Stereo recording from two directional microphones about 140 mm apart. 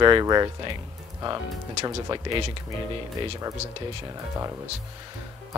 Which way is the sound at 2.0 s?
35° right (ahead or behind).